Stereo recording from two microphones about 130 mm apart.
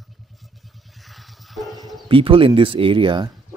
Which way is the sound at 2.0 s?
45° right (ahead or behind).